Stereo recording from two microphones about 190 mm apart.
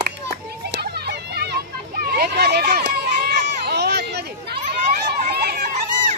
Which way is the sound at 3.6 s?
60° right (ahead or behind).